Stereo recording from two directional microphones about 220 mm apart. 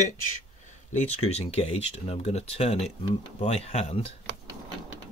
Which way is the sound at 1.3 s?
30° left (ahead or behind).